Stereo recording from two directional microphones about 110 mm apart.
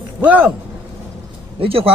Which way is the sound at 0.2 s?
10° right (ahead or behind).